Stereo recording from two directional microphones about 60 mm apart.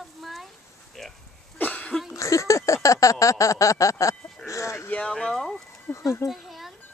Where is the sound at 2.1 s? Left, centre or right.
Left.